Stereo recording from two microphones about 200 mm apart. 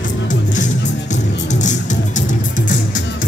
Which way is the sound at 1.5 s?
40° left (ahead or behind).